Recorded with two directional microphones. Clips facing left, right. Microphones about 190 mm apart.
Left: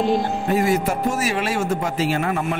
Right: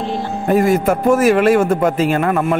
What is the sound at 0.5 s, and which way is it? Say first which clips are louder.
A man's voice: right 7 dB; 50° right (ahead or behind).